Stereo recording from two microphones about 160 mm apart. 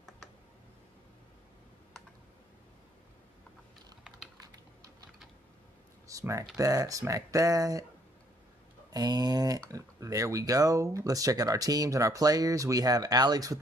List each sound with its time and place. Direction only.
6.0 s speech: 20° right (ahead or behind)
8.9 s speech: 25° right (ahead or behind)